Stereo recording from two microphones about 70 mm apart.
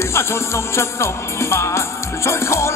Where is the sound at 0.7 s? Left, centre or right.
Left.